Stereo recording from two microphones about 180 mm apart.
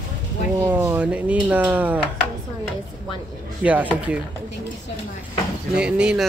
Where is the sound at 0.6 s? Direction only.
15° right (ahead or behind).